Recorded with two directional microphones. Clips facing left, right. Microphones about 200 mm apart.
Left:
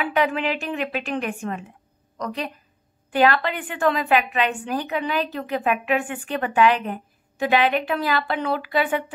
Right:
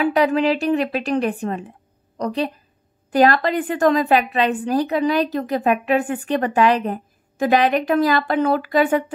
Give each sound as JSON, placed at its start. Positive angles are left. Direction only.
{"t": 0.0, "sound": "a woman's voice", "side_deg": -40}